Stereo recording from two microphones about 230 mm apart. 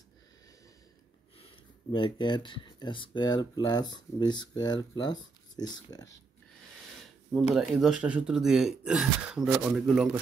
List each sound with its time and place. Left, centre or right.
1.4 s speech: left
7.3 s speech: centre